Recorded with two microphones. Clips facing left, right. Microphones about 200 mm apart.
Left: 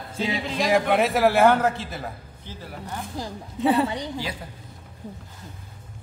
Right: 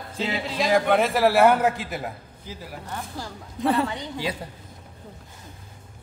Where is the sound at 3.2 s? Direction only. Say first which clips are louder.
Left 6 dB; 15° left (ahead or behind).